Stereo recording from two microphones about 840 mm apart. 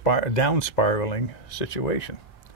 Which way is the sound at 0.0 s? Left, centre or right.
Left.